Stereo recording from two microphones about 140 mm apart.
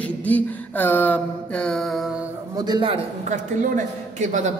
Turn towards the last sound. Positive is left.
turn(degrees=-60)  # may be behind; listen again after turning